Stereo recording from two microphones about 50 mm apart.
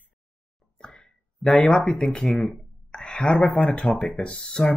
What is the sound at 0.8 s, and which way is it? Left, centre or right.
A woman's voice, centre.